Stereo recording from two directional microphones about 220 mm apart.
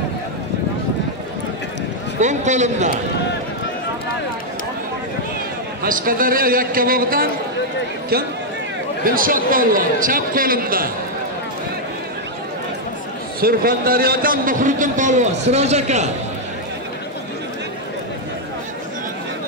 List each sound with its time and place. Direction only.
2.1 s a man's voice: 35° right (ahead or behind)
5.8 s a man's voice: 40° right (ahead or behind)
9.0 s a man's voice: 40° right (ahead or behind)
13.4 s a man's voice: 40° right (ahead or behind)